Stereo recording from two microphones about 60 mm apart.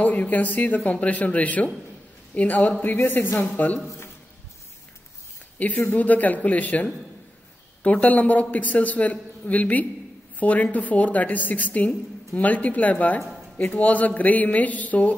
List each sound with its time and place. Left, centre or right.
0.0 s a man's voice: left
5.9 s a man's voice: left